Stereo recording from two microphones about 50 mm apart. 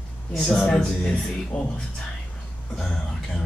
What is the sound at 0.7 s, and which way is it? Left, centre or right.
Speech, centre.